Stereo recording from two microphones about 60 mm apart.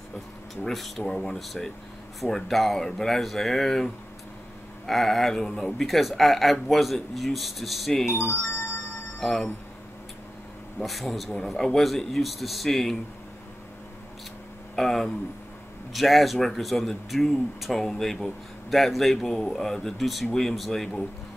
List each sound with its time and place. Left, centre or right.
0.7 s speech: centre
8.2 s music: left
9.2 s speech: centre
10.8 s speech: centre
14.8 s speech: centre